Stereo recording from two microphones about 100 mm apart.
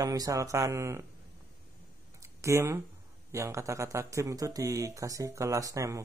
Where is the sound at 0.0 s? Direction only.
35° right (ahead or behind).